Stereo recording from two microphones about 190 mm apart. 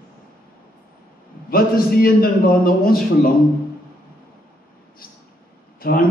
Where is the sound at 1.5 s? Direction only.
50° left (ahead or behind).